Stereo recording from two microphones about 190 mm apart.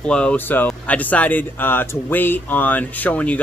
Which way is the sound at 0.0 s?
5° left (ahead or behind).